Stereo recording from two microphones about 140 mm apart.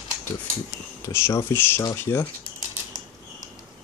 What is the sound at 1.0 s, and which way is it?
Speech, 20° left (ahead or behind).